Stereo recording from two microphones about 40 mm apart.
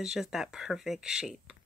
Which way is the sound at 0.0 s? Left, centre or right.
Centre.